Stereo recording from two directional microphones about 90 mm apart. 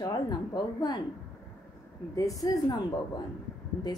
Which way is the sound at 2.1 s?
40° left (ahead or behind).